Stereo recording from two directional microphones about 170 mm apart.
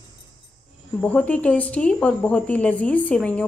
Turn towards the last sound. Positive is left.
turn(degrees=5)  # may be behind; listen again after turning